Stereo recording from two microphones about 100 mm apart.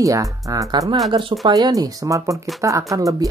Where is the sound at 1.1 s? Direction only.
55° right (ahead or behind).